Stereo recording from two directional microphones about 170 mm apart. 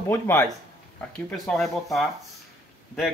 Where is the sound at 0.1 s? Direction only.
15° left (ahead or behind).